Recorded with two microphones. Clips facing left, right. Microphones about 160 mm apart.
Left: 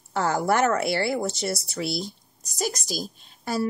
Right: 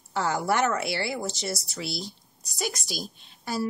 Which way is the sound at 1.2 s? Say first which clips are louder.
Left 4 dB; centre (ahead or behind).